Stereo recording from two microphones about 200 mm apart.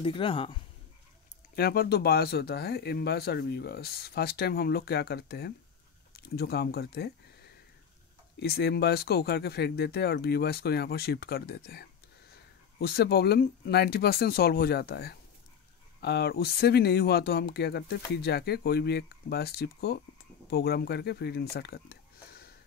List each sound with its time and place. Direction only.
0.0 s speech: 25° left (ahead or behind)
1.5 s speech: 50° left (ahead or behind)
8.4 s speech: 55° left (ahead or behind)